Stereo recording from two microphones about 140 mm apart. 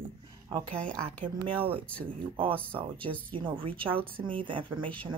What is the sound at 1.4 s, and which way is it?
Speech, 40° right (ahead or behind).